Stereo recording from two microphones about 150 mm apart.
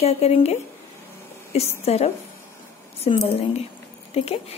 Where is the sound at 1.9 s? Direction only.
45° left (ahead or behind).